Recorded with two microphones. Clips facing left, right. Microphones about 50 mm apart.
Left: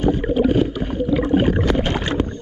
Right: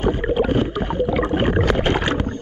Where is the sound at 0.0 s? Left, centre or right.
Right.